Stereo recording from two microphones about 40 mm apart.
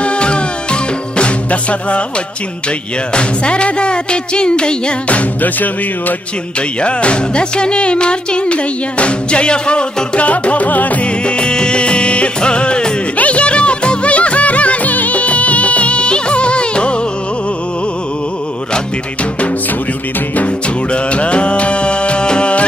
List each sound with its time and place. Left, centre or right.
0.0 s music: left
3.1 s music: left
5.0 s music: left
6.8 s music: left
11.1 s music: left
20.3 s music: left